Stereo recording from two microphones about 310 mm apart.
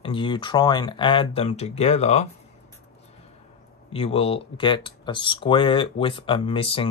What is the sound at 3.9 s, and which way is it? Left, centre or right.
Speech, centre.